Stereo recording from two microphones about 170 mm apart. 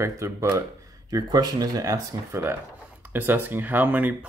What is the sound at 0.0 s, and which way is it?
Speech, 15° right (ahead or behind).